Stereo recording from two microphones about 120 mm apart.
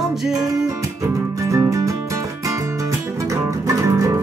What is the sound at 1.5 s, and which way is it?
Music, 25° right (ahead or behind).